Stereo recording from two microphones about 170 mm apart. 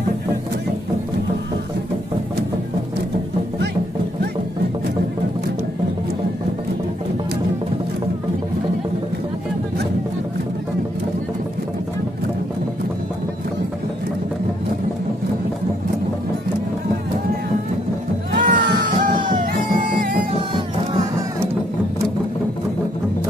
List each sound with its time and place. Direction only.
18.3 s music: 55° right (ahead or behind)